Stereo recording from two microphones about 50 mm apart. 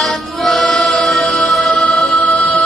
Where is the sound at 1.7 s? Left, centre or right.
Centre.